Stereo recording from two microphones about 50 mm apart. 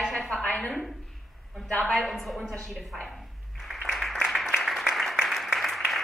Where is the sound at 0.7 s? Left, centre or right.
Centre.